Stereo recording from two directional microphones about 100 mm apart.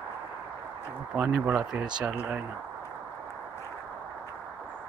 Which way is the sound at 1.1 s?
15° right (ahead or behind).